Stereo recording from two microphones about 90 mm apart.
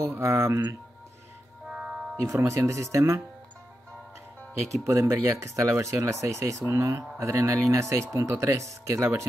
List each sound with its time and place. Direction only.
0.0 s speech: 30° right (ahead or behind)
1.7 s music: 5° right (ahead or behind)
2.1 s speech: 35° right (ahead or behind)
4.8 s speech: 35° right (ahead or behind)